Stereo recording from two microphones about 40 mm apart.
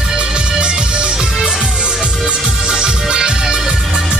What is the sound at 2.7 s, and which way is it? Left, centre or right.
Music, centre.